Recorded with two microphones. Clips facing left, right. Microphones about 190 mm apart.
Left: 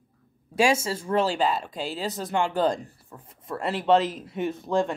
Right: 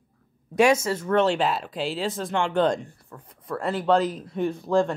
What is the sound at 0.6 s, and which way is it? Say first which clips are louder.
Speech: right 3 dB; 25° left (ahead or behind).